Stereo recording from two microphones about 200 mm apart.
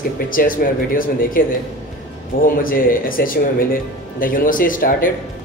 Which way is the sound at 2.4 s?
45° left (ahead or behind).